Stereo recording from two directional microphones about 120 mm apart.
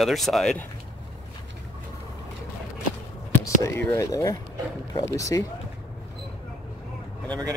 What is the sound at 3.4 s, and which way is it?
Speech, 25° left (ahead or behind).